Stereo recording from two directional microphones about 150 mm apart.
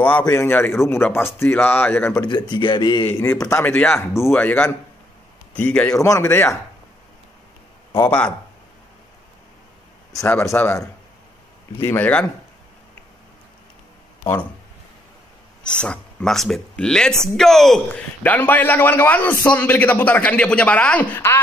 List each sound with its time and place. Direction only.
0.2 s speech: 20° left (ahead or behind)
2.2 s speech: 30° left (ahead or behind)
3.3 s speech: 15° left (ahead or behind)
5.9 s speech: 20° left (ahead or behind)
8.0 s speech: 10° left (ahead or behind)
10.2 s speech: 15° left (ahead or behind)
14.2 s speech: 20° left (ahead or behind)
15.6 s speech: 5° left (ahead or behind)